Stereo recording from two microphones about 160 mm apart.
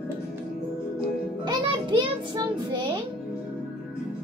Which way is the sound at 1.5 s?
30° right (ahead or behind).